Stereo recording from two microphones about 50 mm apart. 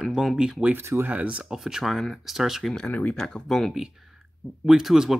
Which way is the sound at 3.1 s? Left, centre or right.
Centre.